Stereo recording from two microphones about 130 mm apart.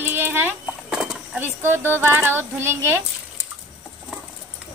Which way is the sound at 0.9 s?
5° right (ahead or behind).